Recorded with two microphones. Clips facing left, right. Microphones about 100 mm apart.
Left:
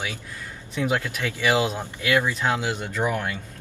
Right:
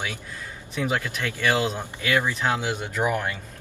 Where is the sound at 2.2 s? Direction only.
15° right (ahead or behind).